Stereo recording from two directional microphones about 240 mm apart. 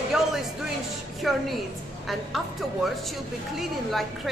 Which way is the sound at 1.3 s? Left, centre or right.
Centre.